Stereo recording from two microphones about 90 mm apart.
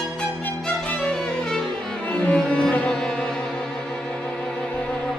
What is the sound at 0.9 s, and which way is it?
Violin, 10° left (ahead or behind).